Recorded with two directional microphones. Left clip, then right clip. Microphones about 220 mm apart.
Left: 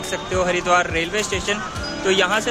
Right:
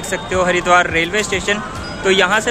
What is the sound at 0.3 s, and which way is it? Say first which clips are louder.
Speech: right 5 dB; 5° left (ahead or behind).